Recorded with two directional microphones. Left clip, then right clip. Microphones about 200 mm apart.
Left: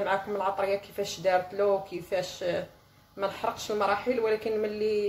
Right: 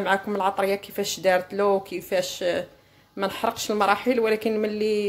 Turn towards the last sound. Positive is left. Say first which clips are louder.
# right 4 dB
turn(degrees=-45)  # may be behind; listen again after turning